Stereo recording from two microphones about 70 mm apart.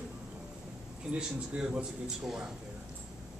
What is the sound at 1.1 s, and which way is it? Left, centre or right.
A woman's voice, centre.